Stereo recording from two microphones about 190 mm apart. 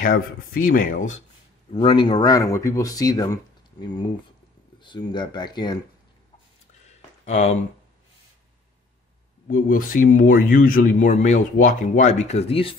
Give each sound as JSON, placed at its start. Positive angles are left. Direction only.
{"t": 0.0, "sound": "speech", "side_deg": 45}
{"t": 1.7, "sound": "speech", "side_deg": 25}
{"t": 4.7, "sound": "speech", "side_deg": 25}
{"t": 6.9, "sound": "a sound", "side_deg": 35}
{"t": 9.5, "sound": "speech", "side_deg": 45}